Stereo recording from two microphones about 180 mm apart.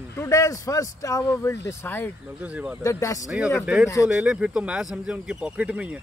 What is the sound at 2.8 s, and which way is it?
Speech, 20° left (ahead or behind).